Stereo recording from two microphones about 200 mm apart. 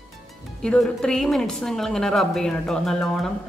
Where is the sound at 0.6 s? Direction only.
5° left (ahead or behind).